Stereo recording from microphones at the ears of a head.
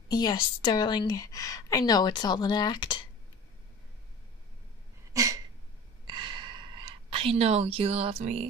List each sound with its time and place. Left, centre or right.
0.2 s a woman's voice: left
6.0 s gasp: right